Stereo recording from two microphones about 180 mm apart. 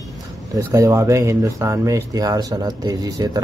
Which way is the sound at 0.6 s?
15° right (ahead or behind).